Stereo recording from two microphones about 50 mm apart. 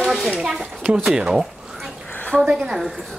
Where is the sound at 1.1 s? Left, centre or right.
Centre.